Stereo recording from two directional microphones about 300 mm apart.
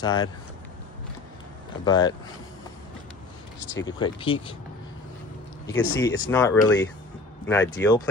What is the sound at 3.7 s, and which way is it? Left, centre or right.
Speech, centre.